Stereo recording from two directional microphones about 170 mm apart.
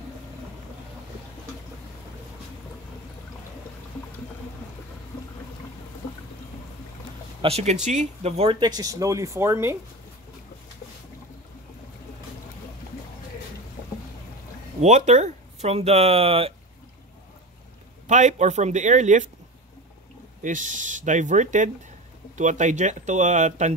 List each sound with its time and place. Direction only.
7.4 s speech: 40° right (ahead or behind); by 9.8 s 15° right (ahead or behind)
14.8 s speech: 40° right (ahead or behind)
18.0 s speech: 45° right (ahead or behind)
20.4 s speech: 50° right (ahead or behind)